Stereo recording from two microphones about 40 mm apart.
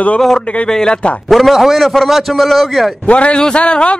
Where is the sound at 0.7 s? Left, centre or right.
Centre.